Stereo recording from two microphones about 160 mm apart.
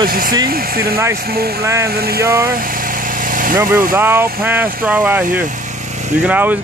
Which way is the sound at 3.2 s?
55° right (ahead or behind).